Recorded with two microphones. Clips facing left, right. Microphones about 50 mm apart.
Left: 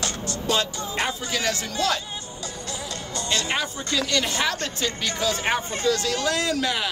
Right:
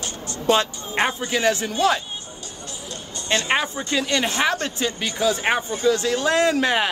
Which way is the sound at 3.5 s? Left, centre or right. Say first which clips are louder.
Right 4 dB; right.